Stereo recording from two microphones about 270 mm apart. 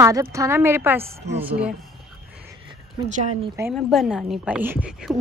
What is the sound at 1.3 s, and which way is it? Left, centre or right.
Speech, right.